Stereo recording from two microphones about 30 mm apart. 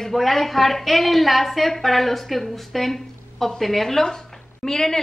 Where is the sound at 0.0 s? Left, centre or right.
Centre.